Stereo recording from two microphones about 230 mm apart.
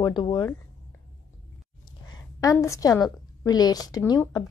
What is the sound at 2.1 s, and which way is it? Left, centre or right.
A woman's voice, centre.